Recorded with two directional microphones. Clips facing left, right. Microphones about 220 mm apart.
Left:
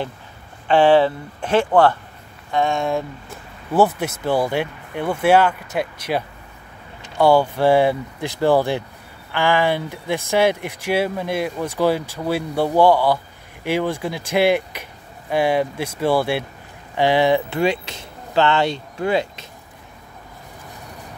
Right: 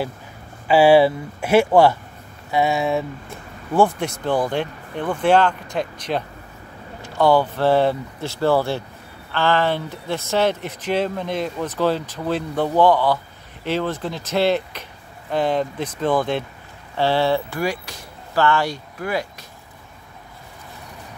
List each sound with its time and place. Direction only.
0.7 s speech: 10° right (ahead or behind); by 19.4 s 25° left (ahead or behind)